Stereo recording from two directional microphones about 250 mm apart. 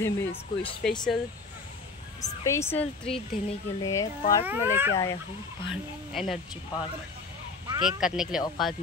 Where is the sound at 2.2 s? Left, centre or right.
Centre.